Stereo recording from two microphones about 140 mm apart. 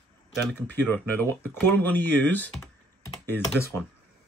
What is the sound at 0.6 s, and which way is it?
Speech, 15° left (ahead or behind).